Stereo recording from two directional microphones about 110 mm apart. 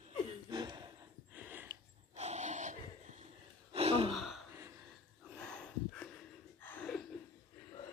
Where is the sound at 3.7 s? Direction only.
60° right (ahead or behind).